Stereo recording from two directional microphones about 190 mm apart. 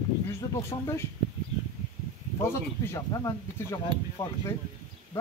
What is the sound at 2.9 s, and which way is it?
Speech, 15° left (ahead or behind).